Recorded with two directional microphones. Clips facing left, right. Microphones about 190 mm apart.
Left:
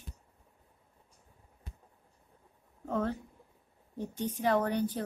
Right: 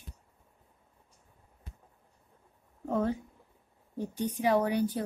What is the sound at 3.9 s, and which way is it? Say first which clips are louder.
A woman's voice: right 2 dB; 15° right (ahead or behind).